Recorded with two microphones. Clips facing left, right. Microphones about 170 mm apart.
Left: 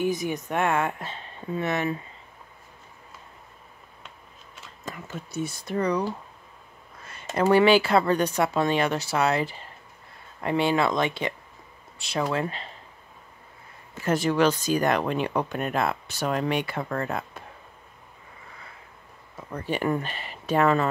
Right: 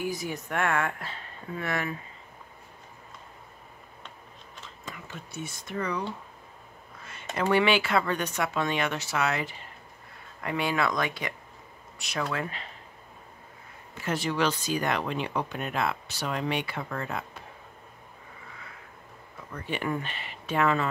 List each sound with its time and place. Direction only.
0.0 s speech: 20° left (ahead or behind)
4.8 s speech: 40° left (ahead or behind)
7.3 s speech: 40° left (ahead or behind)
14.0 s speech: 45° left (ahead or behind)
19.5 s speech: 35° left (ahead or behind)